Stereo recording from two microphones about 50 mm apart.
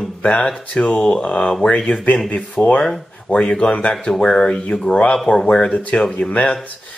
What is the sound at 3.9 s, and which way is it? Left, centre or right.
Speech, centre.